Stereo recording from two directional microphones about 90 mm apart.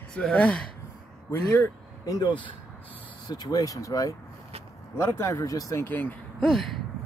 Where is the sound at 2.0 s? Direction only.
50° left (ahead or behind).